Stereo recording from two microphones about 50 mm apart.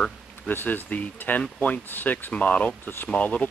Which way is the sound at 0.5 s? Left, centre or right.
Left.